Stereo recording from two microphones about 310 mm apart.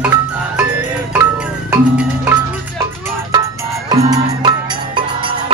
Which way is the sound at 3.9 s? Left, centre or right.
Centre.